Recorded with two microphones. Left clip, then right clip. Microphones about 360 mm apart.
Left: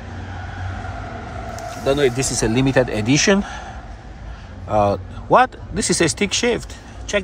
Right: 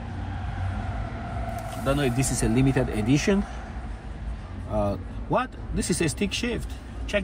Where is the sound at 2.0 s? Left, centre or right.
Left.